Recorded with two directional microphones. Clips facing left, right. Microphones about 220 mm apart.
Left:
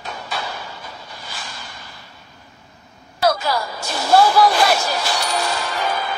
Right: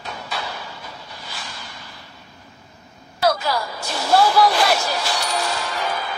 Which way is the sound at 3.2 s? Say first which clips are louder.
Left 1 dB; 45° left (ahead or behind).